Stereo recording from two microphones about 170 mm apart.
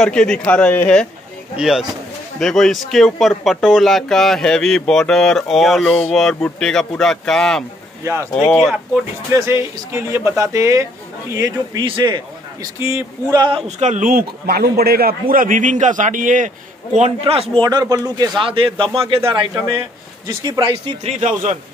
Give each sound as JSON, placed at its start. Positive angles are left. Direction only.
{"t": 0.0, "sound": "speech", "side_deg": 5}
{"t": 1.6, "sound": "speech", "side_deg": -5}
{"t": 8.0, "sound": "speech", "side_deg": -15}
{"t": 8.6, "sound": "speech", "side_deg": -5}
{"t": 9.3, "sound": "a man's voice", "side_deg": -15}
{"t": 11.8, "sound": "a man's voice", "side_deg": -30}
{"t": 12.7, "sound": "speech", "side_deg": -15}
{"t": 13.4, "sound": "a man's voice", "side_deg": -30}
{"t": 17.2, "sound": "speech", "side_deg": -35}
{"t": 17.6, "sound": "a man's voice", "side_deg": -20}
{"t": 19.5, "sound": "a man's voice", "side_deg": -15}
{"t": 21.0, "sound": "speech", "side_deg": -40}